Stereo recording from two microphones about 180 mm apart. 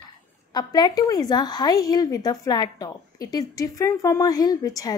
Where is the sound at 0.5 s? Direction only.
20° left (ahead or behind).